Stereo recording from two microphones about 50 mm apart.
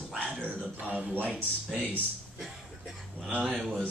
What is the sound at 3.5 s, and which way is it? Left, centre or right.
Speech, centre.